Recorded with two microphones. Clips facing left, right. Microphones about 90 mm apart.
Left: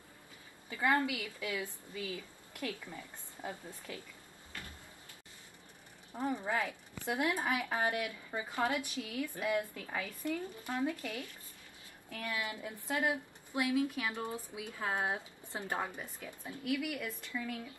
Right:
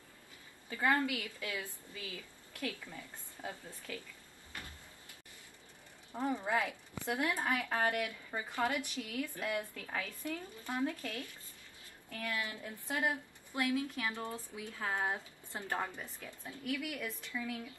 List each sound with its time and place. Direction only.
0.7 s a woman's voice: 15° left (ahead or behind)
4.5 s door: 20° right (ahead or behind)
6.1 s speech: 20° right (ahead or behind)
7.1 s a woman's voice: 15° left (ahead or behind)